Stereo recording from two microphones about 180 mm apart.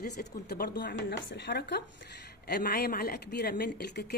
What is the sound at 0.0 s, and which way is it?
A woman's voice, 65° left (ahead or behind).